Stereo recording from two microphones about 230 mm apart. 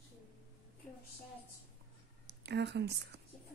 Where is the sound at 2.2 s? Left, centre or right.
Right.